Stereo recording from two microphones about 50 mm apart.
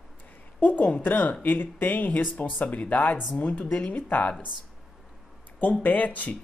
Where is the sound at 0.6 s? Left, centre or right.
Left.